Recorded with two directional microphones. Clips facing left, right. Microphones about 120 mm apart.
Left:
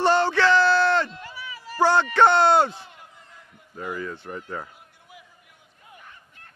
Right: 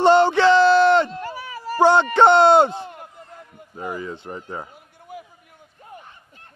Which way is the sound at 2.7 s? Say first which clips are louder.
Right 10 dB; 50° right (ahead or behind).